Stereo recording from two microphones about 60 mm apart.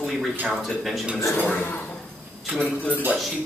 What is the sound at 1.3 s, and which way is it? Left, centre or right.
Speech, left.